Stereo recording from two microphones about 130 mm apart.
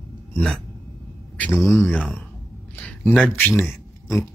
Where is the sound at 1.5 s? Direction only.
20° left (ahead or behind).